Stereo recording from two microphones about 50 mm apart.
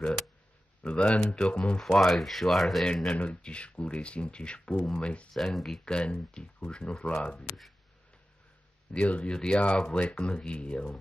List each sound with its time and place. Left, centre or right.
0.8 s speech: left
1.8 s speech: centre
3.2 s speech: left
4.7 s speech: centre
5.0 s speech: left
5.3 s speech: centre
5.9 s speech: centre
8.9 s speech: left